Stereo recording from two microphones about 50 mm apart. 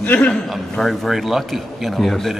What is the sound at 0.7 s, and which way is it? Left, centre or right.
Speech, centre.